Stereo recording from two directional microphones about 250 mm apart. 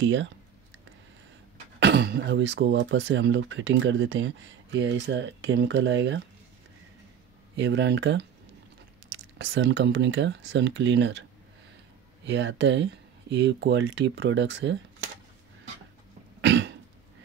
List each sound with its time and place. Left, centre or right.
0.0 s speech: right
1.8 s speech: right
7.5 s speech: right
12.3 s speech: right
16.3 s cough: right